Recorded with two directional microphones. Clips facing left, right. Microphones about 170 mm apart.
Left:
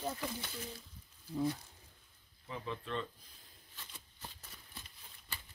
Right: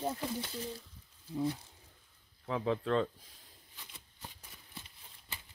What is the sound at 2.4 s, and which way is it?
Speech, 90° right.